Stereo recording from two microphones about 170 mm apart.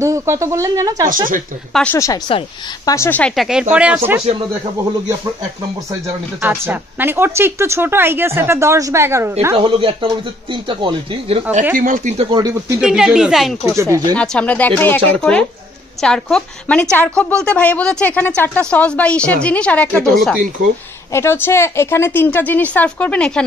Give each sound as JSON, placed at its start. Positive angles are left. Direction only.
{"t": 0.0, "sound": "speech", "side_deg": -15}
{"t": 1.7, "sound": "a woman's voice", "side_deg": 5}
{"t": 2.0, "sound": "a woman's voice", "side_deg": 20}
{"t": 3.1, "sound": "a woman's voice", "side_deg": 5}
{"t": 6.0, "sound": "speech", "side_deg": -15}
{"t": 9.6, "sound": "speech", "side_deg": -30}
{"t": 11.7, "sound": "speech", "side_deg": -50}
{"t": 12.3, "sound": "speech", "side_deg": -25}
{"t": 12.8, "sound": "a woman's voice", "side_deg": -5}
{"t": 13.7, "sound": "speech", "side_deg": -20}
{"t": 14.1, "sound": "a woman's voice", "side_deg": 5}
{"t": 21.1, "sound": "speech", "side_deg": 15}